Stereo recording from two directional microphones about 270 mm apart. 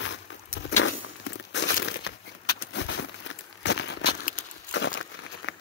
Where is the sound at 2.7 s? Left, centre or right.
Left.